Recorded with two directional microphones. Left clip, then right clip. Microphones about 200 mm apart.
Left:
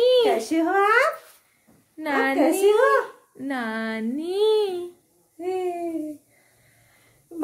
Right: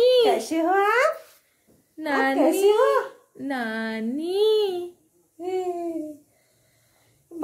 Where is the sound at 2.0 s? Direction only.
5° right (ahead or behind).